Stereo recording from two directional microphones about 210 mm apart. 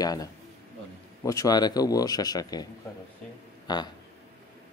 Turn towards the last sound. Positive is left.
turn(degrees=20)  # may be behind; listen again after turning